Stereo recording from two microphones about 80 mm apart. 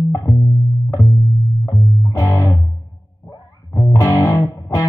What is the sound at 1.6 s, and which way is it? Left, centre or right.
Music, left.